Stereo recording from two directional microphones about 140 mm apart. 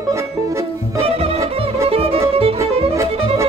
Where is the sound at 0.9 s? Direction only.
45° right (ahead or behind).